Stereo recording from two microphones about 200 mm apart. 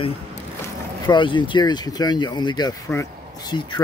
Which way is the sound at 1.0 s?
25° left (ahead or behind).